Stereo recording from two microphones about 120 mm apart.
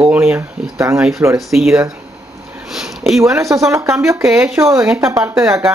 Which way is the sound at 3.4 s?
25° right (ahead or behind).